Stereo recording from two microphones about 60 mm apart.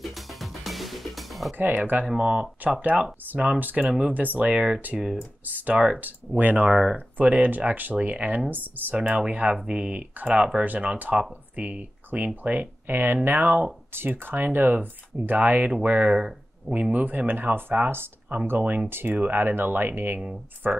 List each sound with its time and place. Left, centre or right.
0.1 s music: centre
1.5 s speech: right
2.0 s speech: centre
3.3 s speech: right; by 5.2 s centre
5.4 s speech: right
8.9 s speech: right
16.2 s a sound: centre
16.9 s speech: right